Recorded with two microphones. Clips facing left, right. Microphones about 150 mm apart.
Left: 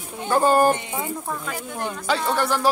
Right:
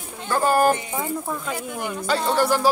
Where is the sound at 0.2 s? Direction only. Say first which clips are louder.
Left 2 dB; 20° left (ahead or behind).